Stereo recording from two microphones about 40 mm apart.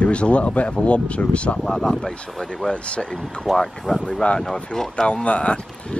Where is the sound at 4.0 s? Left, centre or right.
Left.